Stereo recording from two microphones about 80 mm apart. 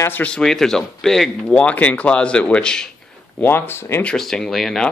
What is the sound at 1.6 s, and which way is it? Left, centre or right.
Speech, centre.